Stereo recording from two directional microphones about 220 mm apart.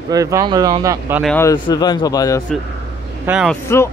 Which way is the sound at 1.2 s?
10° left (ahead or behind).